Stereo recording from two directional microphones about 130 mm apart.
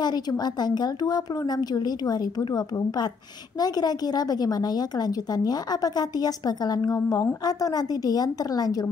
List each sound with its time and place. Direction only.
0.0 s a woman's voice: 30° left (ahead or behind)